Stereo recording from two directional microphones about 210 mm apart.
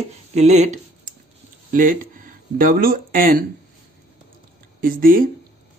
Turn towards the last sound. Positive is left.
turn(degrees=-45)  # may be behind; listen again after turning